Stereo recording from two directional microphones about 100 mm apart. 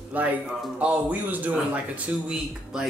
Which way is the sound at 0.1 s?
15° right (ahead or behind).